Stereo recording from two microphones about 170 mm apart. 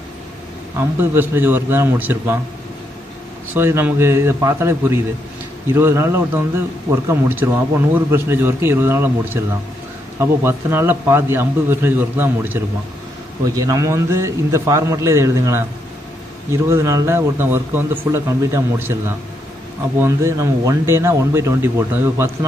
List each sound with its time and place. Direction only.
0.7 s speech: 10° right (ahead or behind)
3.5 s speech: 15° right (ahead or behind)
10.4 s speech: 15° right (ahead or behind)
16.6 s speech: 15° right (ahead or behind)